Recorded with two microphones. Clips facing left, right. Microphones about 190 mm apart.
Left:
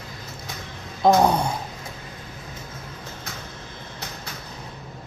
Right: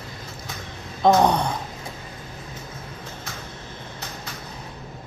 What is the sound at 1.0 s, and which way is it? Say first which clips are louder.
Gasp: even; 5° left (ahead or behind).